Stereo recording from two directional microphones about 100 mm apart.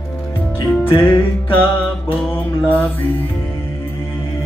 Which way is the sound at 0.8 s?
25° left (ahead or behind).